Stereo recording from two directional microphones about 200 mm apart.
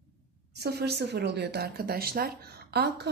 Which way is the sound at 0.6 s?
55° right (ahead or behind).